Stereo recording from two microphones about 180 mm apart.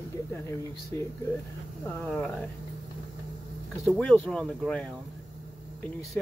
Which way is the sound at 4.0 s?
5° left (ahead or behind).